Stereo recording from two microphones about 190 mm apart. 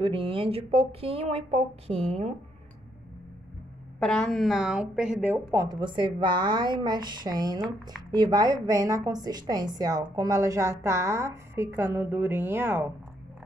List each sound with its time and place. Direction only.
0.0 s speech: 30° right (ahead or behind)
4.0 s speech: 5° left (ahead or behind)
5.5 s a woman's voice: 20° right (ahead or behind)